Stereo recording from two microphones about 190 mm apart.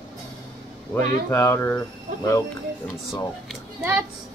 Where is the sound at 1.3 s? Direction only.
15° left (ahead or behind).